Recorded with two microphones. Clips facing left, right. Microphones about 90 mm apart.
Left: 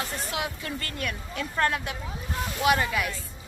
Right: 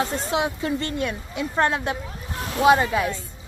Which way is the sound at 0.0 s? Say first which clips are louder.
Right 8 dB; 30° right (ahead or behind).